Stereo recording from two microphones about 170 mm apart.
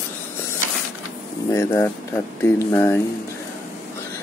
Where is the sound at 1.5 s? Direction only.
15° left (ahead or behind).